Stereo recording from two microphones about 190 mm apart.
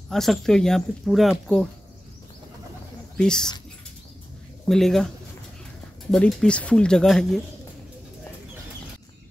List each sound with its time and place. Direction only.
0.1 s speech: centre (ahead or behind)
3.2 s a woman's voice: 5° left (ahead or behind)
4.6 s speech: centre (ahead or behind)
6.1 s speech: 5° left (ahead or behind)